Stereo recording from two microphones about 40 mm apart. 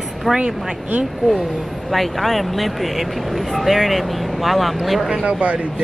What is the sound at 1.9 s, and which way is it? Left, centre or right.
Speech, centre.